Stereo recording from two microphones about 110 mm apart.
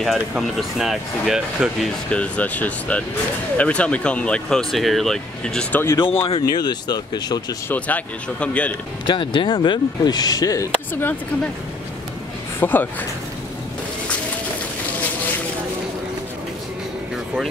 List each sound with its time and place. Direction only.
0.0 s speech: centre (ahead or behind)
2.0 s speech: 10° left (ahead or behind)
5.9 s speech: 55° left (ahead or behind)
6.4 s speech: 40° left (ahead or behind)
7.6 s speech: 15° left (ahead or behind)
9.0 s speech: 45° left (ahead or behind)
12.5 s speech: 15° left (ahead or behind)